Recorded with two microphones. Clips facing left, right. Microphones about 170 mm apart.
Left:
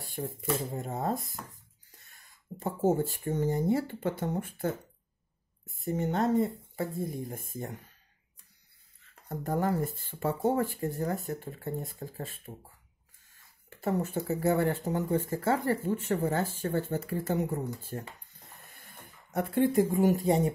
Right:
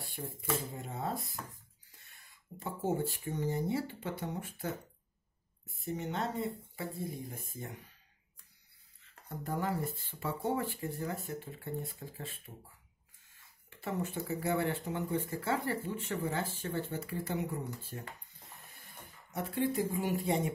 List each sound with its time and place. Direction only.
0.7 s speech: 45° left (ahead or behind)
2.6 s speech: 45° left (ahead or behind)
5.9 s speech: 45° left (ahead or behind)
9.3 s speech: 45° left (ahead or behind)
13.7 s speech: 45° left (ahead or behind)
19.3 s speech: 55° left (ahead or behind); by 20.5 s 40° left (ahead or behind)